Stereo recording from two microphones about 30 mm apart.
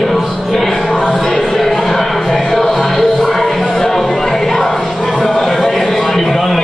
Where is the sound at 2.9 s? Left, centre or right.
Centre.